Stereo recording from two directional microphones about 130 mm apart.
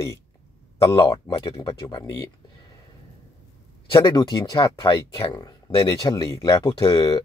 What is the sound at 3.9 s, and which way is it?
Speech, 35° left (ahead or behind).